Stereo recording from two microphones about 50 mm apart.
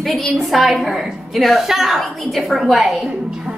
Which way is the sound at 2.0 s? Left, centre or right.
Centre.